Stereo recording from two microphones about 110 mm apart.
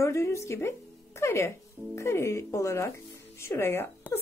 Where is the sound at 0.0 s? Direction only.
25° left (ahead or behind).